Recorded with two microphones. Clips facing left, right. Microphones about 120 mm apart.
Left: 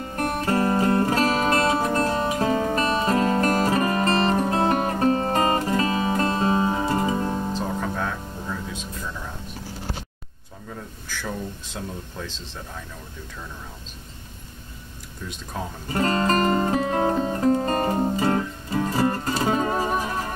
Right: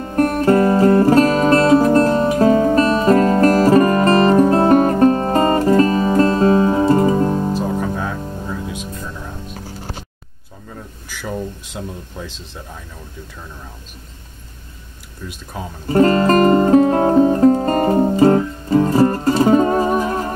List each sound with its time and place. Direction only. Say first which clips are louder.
0.0 s music: right 10 dB; 45° right (ahead or behind)
7.5 s music: right 6 dB; 5° right (ahead or behind)
11.1 s a sound: right 5 dB; 10° right (ahead or behind)
15.5 s speech: right 2 dB; 5° right (ahead or behind)
15.9 s music: right 9 dB; 45° right (ahead or behind)